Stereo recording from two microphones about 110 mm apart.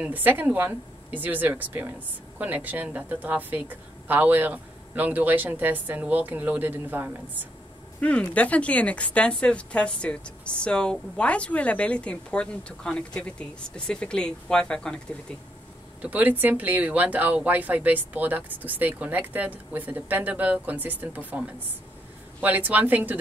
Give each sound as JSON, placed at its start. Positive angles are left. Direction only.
{"t": 0.0, "sound": "speech", "side_deg": -15}
{"t": 8.0, "sound": "a woman's voice", "side_deg": 10}
{"t": 16.0, "sound": "speech", "side_deg": -15}